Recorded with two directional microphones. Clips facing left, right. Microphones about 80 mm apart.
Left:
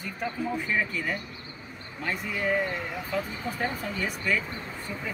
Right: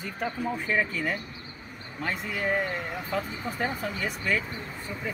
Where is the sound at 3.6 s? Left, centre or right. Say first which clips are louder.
Right 1 dB; right.